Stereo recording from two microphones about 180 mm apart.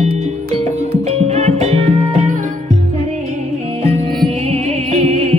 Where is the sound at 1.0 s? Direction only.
35° right (ahead or behind).